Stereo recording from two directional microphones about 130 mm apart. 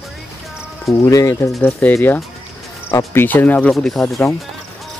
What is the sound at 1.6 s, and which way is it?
Speech, 10° left (ahead or behind).